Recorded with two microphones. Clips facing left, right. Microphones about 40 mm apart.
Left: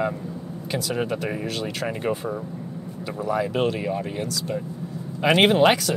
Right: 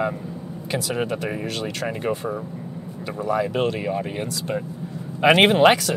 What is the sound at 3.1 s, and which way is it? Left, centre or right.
Speech, centre.